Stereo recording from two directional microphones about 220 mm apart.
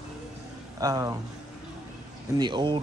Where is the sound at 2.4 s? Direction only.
20° right (ahead or behind).